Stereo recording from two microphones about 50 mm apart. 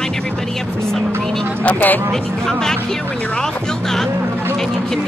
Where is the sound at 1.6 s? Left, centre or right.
Left.